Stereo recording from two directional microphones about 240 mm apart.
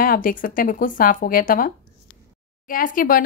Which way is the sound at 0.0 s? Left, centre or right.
Left.